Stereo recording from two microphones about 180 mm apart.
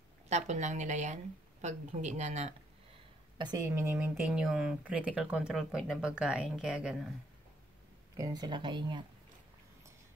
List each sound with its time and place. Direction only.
0.3 s a woman's voice: 40° right (ahead or behind)
3.3 s speech: 20° right (ahead or behind); by 7.1 s 5° right (ahead or behind)
8.2 s speech: 20° right (ahead or behind)